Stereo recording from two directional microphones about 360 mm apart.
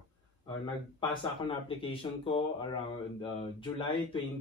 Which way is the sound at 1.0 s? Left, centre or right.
Centre.